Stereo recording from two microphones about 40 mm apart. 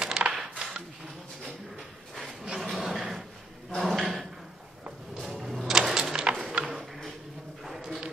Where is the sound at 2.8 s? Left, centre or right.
Centre.